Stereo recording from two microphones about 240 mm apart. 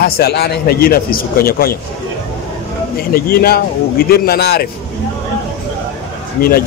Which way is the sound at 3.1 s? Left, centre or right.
Left.